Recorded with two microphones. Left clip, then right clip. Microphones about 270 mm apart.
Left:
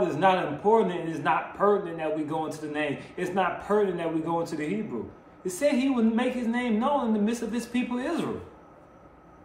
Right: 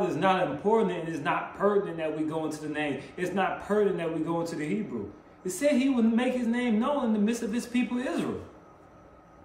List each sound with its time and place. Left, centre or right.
0.0 s a man's voice: centre